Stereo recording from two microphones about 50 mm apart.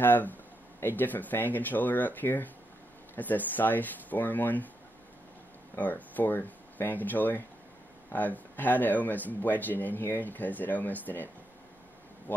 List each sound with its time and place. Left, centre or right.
0.0 s speech: left
5.8 s speech: left
12.3 s speech: left